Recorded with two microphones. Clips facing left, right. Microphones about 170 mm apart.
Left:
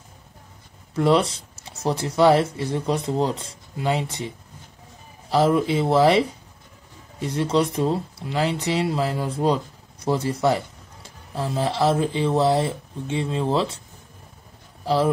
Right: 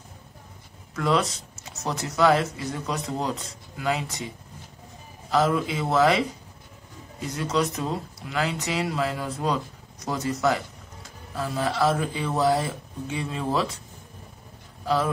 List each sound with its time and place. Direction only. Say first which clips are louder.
0.9 s speech: left 5 dB; 30° left (ahead or behind)
5.3 s speech: left 4 dB; 30° left (ahead or behind)